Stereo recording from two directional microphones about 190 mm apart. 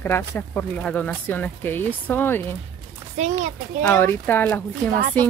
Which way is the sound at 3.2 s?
35° right (ahead or behind).